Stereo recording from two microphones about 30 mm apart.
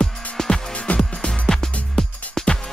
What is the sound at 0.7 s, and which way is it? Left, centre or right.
Music, left.